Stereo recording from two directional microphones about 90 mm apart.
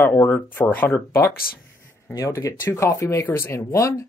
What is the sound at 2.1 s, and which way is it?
Speech, 35° left (ahead or behind).